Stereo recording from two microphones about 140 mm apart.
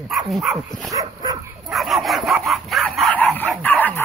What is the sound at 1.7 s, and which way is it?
Dog, centre (ahead or behind).